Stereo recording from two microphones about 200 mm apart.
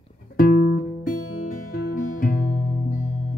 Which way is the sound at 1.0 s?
45° left (ahead or behind).